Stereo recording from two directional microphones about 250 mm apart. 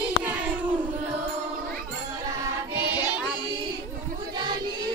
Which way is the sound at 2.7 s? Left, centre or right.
Right.